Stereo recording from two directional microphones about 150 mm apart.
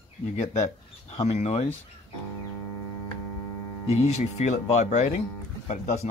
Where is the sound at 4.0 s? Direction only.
45° left (ahead or behind).